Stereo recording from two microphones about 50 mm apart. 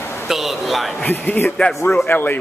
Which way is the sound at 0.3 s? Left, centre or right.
Centre.